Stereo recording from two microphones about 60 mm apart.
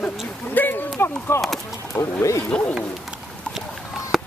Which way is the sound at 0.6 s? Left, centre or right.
Left.